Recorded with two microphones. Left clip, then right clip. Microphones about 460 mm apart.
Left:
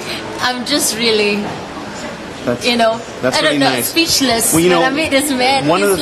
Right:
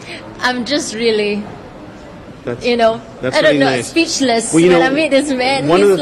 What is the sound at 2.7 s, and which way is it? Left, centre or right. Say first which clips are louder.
A woman's voice: right 2 dB; right.